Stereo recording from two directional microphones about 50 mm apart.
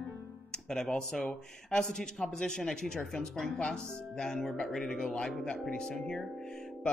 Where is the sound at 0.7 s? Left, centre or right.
Centre.